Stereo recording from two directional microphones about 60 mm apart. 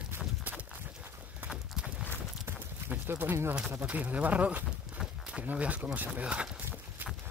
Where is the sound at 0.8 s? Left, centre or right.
Right.